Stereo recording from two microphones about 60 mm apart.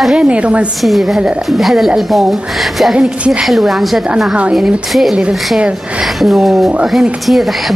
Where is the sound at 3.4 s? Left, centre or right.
Centre.